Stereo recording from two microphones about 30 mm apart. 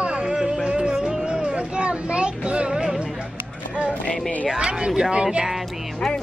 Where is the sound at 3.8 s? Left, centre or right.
Right.